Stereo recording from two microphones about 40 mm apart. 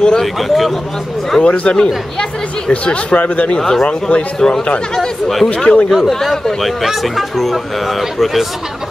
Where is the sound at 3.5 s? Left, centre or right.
Centre.